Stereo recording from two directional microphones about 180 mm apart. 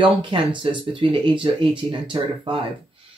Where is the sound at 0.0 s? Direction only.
30° right (ahead or behind).